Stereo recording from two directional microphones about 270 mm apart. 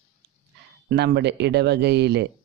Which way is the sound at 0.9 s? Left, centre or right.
Right.